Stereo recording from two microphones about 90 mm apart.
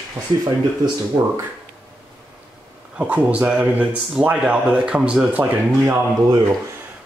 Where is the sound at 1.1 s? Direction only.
30° right (ahead or behind).